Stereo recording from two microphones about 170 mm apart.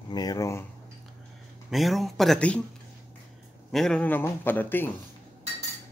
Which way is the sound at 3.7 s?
5° left (ahead or behind).